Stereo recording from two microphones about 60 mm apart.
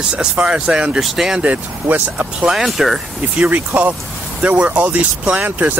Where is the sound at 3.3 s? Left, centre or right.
Right.